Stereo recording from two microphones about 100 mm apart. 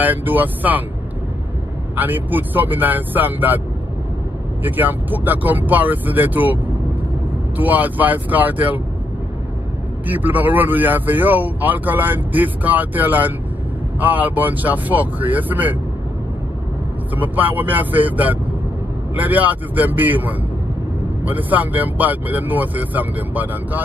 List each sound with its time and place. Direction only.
0.0 s speech: 15° right (ahead or behind)
2.0 s speech: 20° right (ahead or behind)
4.6 s speech: 20° right (ahead or behind)
10.0 s speech: 20° right (ahead or behind)
17.1 s speech: 15° right (ahead or behind)